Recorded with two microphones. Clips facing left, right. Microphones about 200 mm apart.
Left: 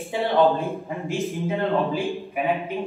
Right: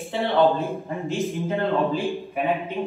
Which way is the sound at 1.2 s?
Centre (ahead or behind).